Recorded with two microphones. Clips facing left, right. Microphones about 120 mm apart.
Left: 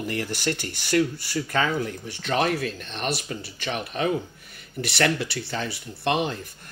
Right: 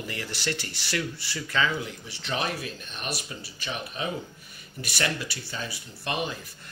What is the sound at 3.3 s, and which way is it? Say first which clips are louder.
Speech: left 5 dB; 60° left (ahead or behind).